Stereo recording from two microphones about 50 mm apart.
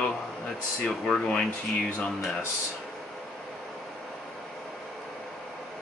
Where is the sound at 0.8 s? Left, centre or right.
Centre.